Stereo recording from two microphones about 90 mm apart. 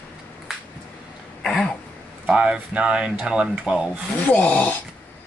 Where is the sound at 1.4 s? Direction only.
5° left (ahead or behind).